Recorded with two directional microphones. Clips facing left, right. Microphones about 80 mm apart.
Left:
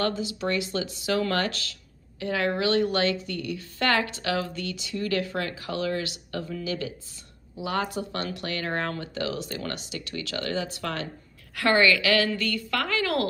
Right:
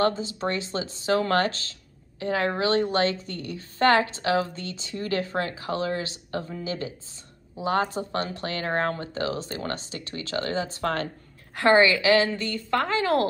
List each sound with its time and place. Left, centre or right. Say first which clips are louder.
0.0 s speech: right 3 dB; right
11.5 s a woman's voice: right 3 dB; right